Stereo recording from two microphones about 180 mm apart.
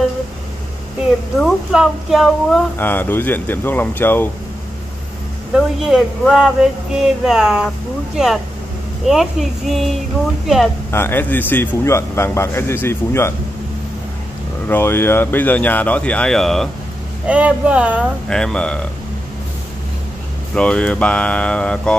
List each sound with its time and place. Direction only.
1.4 s speech: 5° right (ahead or behind)
2.8 s a man's voice: 10° left (ahead or behind)
5.5 s speech: 5° right (ahead or behind)
10.9 s a man's voice: 10° left (ahead or behind)
14.7 s a man's voice: 15° left (ahead or behind); by 18.0 s 5° right (ahead or behind)
18.3 s speech: 5° left (ahead or behind)
20.5 s speech: 5° left (ahead or behind)